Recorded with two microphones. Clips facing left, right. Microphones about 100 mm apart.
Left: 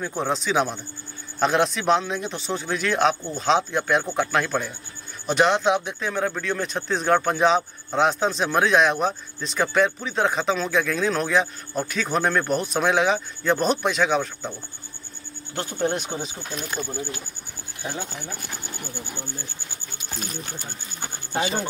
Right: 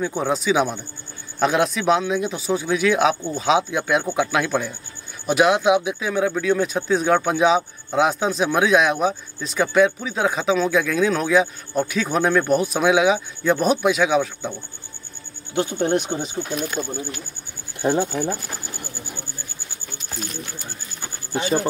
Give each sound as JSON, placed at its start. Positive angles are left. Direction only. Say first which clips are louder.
{"t": 0.0, "sound": "speech", "louder": "right 4 dB", "side_deg": -5}
{"t": 15.5, "sound": "speech", "louder": "right 5 dB", "side_deg": 0}
{"t": 21.0, "sound": "speech", "louder": "even", "side_deg": 25}